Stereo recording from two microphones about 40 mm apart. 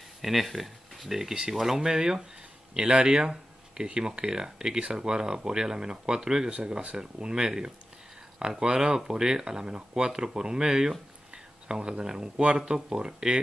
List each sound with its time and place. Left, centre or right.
0.2 s speech: centre